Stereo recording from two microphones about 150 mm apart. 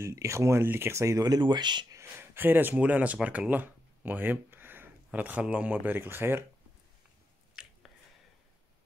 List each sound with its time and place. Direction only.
0.0 s speech: 20° right (ahead or behind)
2.0 s speech: 15° right (ahead or behind)
7.6 s a sound: 5° right (ahead or behind)